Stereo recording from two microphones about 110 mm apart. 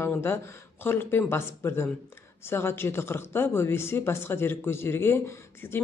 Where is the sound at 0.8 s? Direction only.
20° left (ahead or behind).